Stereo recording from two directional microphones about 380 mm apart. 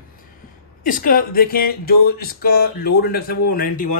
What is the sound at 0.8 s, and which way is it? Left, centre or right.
A man's voice, left.